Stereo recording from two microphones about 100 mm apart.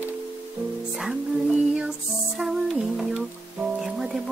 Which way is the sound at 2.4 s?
5° right (ahead or behind).